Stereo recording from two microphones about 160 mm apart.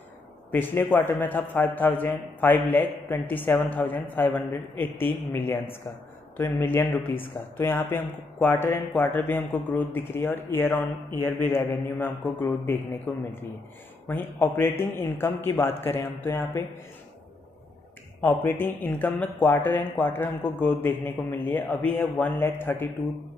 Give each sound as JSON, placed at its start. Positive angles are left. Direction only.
{"t": 0.5, "sound": "a man's voice", "side_deg": 15}
{"t": 14.0, "sound": "a man's voice", "side_deg": 10}
{"t": 18.3, "sound": "a man's voice", "side_deg": 15}